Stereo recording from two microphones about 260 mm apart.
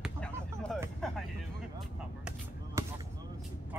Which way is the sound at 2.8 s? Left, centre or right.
Centre.